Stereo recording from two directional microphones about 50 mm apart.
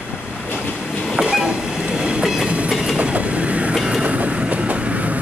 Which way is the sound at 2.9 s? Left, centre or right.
Right.